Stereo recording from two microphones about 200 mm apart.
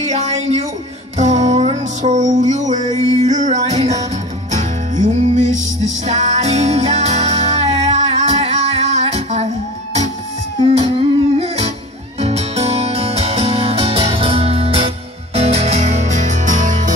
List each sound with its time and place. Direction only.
0.0 s a sound: 35° right (ahead or behind)
1.1 s music: 35° right (ahead or behind)
10.6 s music: 25° right (ahead or behind)